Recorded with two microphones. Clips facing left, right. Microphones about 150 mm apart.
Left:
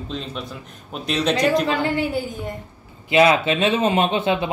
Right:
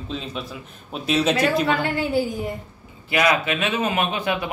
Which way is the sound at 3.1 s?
25° left (ahead or behind).